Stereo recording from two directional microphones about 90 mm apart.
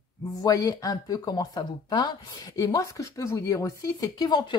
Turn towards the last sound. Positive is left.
turn(degrees=45)  # may be behind; listen again after turning